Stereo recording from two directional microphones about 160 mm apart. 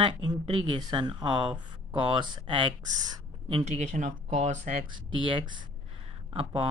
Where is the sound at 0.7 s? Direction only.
30° right (ahead or behind).